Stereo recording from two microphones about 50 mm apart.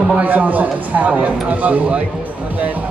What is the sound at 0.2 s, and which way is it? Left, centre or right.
Speech, right.